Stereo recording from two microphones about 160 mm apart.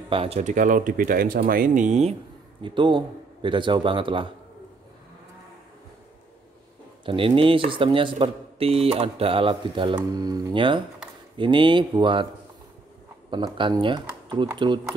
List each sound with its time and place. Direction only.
0.1 s speech: 40° right (ahead or behind)
2.6 s speech: 30° right (ahead or behind)
7.1 s speech: 35° right (ahead or behind)
13.3 s speech: 30° right (ahead or behind)